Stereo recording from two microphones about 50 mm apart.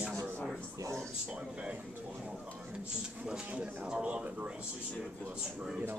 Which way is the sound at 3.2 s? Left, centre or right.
Centre.